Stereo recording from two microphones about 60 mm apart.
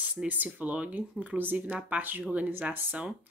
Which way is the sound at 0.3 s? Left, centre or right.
Right.